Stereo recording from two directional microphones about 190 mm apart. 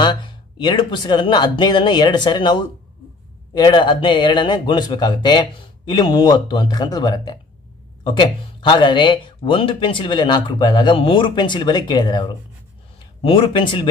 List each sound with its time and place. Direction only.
0.0 s speech: 25° left (ahead or behind)